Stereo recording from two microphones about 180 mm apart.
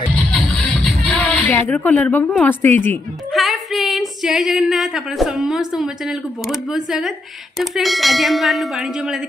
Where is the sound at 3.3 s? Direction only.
Centre (ahead or behind).